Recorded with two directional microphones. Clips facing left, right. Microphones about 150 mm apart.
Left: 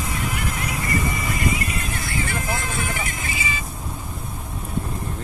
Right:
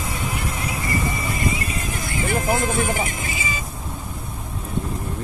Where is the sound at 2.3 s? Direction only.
45° right (ahead or behind).